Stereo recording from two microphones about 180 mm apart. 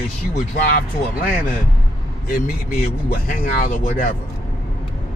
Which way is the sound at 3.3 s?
50° left (ahead or behind).